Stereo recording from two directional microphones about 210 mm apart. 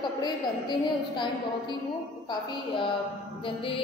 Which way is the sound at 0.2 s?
20° left (ahead or behind).